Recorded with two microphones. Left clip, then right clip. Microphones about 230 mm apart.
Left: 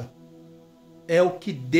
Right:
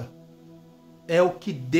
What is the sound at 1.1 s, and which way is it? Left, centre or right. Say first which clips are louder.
Speech: left 1 dB; centre.